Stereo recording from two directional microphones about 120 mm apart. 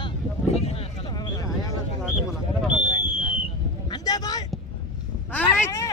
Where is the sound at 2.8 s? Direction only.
40° left (ahead or behind).